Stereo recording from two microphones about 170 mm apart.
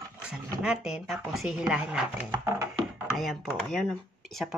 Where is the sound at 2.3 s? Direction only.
15° right (ahead or behind).